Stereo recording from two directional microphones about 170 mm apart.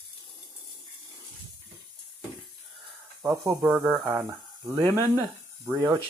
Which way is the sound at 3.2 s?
15° right (ahead or behind).